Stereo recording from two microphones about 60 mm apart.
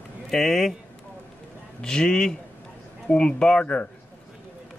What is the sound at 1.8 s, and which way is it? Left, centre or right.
Speech, centre.